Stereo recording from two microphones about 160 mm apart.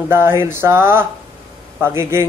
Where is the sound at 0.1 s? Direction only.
15° right (ahead or behind).